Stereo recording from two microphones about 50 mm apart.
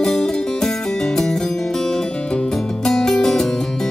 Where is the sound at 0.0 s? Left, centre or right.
Centre.